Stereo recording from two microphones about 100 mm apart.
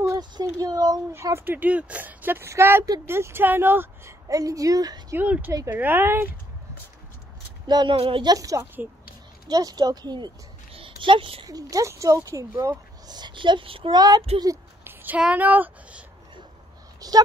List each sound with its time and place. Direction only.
0.2 s speech: 40° right (ahead or behind)
1.1 s speech: 25° right (ahead or behind)
4.3 s speech: 35° right (ahead or behind)
5.1 s speech: 15° right (ahead or behind)
7.6 s speech: 45° right (ahead or behind)
7.9 s speech: 60° right (ahead or behind)
8.3 s speech: 35° right (ahead or behind)
10.7 s a sound: 70° right (ahead or behind)
11.4 s speech: 40° right (ahead or behind)
13.1 s speech: 50° right (ahead or behind)
13.9 s speech: 40° right (ahead or behind)
14.9 s speech: 15° right (ahead or behind)
17.0 s a sound: 40° right (ahead or behind)